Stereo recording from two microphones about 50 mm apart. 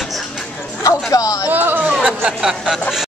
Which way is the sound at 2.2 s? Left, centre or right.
Centre.